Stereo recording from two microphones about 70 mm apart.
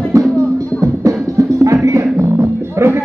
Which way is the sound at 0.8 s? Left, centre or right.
Right.